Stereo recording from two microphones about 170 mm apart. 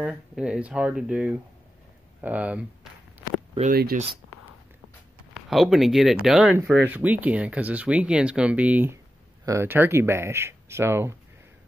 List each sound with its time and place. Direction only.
0.0 s speech: 5° right (ahead or behind)
3.7 s speech: 60° right (ahead or behind)
4.3 s a sound: 15° left (ahead or behind)
5.3 s speech: centre (ahead or behind)